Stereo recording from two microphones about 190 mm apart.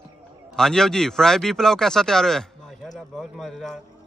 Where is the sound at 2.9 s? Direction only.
Centre (ahead or behind).